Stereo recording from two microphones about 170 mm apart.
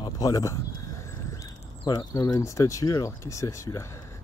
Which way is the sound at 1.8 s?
25° left (ahead or behind).